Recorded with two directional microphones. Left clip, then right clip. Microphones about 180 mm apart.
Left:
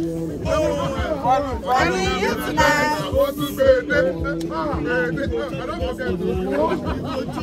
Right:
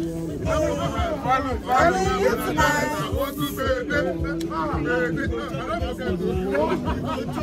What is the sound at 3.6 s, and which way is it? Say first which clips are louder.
Music: left 8 dB; 55° left (ahead or behind).